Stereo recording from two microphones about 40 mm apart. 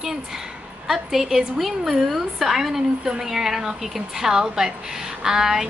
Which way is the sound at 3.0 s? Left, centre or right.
Centre.